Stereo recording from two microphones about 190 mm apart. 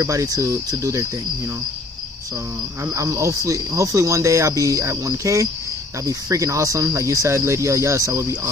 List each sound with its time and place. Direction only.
0.0 s speech: 15° right (ahead or behind)
2.8 s speech: 15° right (ahead or behind)